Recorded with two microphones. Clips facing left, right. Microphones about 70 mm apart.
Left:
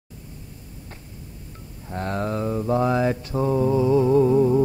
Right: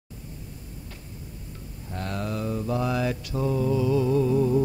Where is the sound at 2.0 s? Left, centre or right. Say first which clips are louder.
Left 5 dB; left.